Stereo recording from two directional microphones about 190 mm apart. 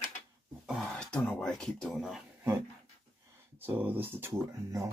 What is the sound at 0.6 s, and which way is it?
Speech, centre (ahead or behind).